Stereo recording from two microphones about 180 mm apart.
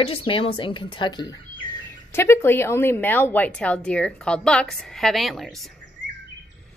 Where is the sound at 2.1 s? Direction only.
15° left (ahead or behind).